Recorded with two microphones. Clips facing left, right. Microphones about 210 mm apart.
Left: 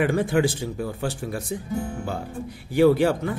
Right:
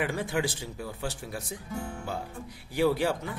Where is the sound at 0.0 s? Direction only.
55° left (ahead or behind).